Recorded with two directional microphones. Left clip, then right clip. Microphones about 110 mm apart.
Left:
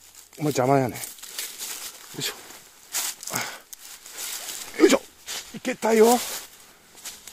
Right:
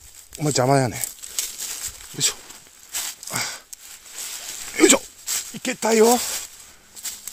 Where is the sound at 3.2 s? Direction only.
20° right (ahead or behind).